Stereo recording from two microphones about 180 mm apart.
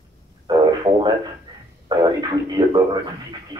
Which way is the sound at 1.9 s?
20° right (ahead or behind).